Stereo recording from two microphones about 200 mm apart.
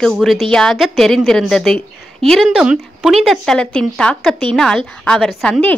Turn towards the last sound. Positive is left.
turn(degrees=5)  # may be behind; listen again after turning